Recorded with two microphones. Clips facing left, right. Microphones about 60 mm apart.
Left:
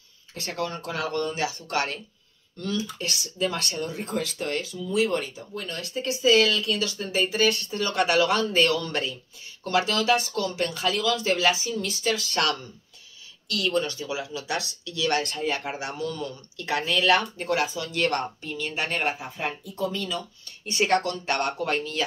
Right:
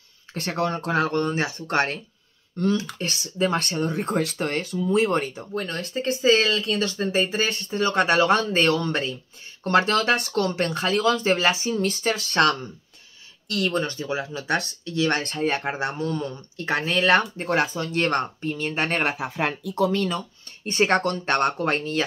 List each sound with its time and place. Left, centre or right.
0.3 s speech: right
9.6 s speech: right
19.1 s speech: right
20.0 s speech: right